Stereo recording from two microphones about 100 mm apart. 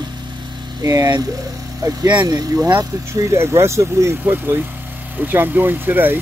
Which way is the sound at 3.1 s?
30° right (ahead or behind).